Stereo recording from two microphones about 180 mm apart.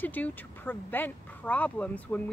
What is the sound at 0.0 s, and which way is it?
Speech, 10° left (ahead or behind).